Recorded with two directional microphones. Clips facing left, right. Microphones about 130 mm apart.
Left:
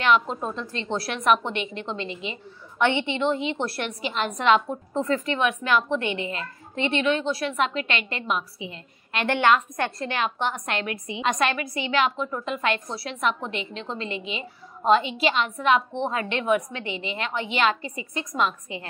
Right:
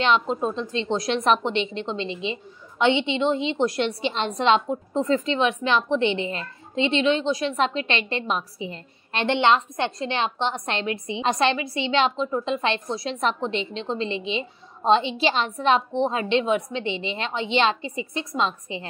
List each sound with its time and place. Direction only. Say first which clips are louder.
0.0 s a woman's voice: right 1 dB; 25° right (ahead or behind)
4.0 s a woman's voice: left 2 dB; 30° right (ahead or behind)
9.2 s a woman's voice: right 1 dB; 25° right (ahead or behind)